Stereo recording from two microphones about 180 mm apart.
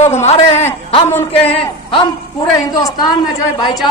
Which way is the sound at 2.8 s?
20° left (ahead or behind).